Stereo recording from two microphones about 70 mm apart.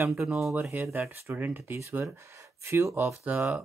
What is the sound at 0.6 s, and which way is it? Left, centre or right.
Speech, right.